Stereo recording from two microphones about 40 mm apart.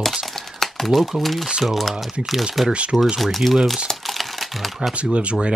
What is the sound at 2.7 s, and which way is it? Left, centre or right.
Speech, right.